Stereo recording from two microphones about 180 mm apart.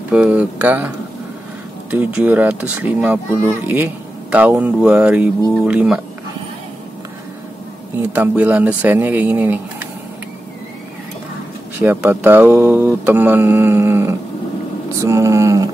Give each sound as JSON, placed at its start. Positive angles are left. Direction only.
{"t": 0.1, "sound": "speech", "side_deg": -5}
{"t": 8.0, "sound": "speech", "side_deg": -10}
{"t": 11.8, "sound": "speech", "side_deg": -10}